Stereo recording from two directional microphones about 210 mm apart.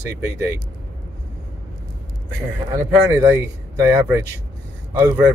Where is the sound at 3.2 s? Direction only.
10° right (ahead or behind).